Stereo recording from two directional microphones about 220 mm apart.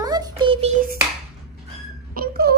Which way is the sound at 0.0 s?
20° right (ahead or behind).